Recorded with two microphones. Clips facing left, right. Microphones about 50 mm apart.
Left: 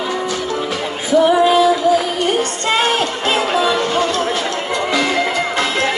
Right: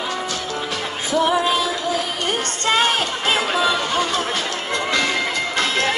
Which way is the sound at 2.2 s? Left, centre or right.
Centre.